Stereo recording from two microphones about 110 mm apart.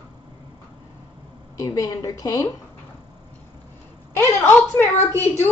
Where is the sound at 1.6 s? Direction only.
30° left (ahead or behind).